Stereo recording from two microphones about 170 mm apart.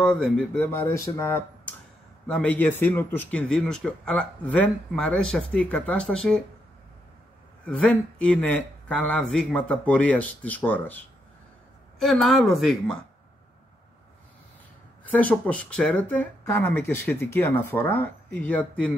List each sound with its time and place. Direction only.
0.0 s a man's voice: 5° left (ahead or behind)
7.6 s a man's voice: 5° left (ahead or behind)
15.0 s a man's voice: 10° left (ahead or behind)